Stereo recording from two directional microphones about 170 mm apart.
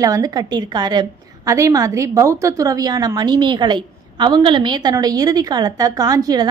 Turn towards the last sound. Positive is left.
turn(degrees=-20)  # may be behind; listen again after turning